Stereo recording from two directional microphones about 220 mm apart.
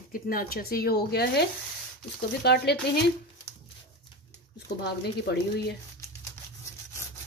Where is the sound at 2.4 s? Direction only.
50° left (ahead or behind).